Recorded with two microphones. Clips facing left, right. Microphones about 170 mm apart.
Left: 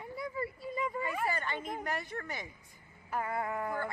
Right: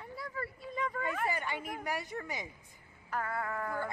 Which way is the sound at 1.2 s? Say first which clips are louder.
Even; 15° right (ahead or behind).